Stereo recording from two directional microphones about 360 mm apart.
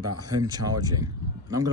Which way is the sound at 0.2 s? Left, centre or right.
Centre.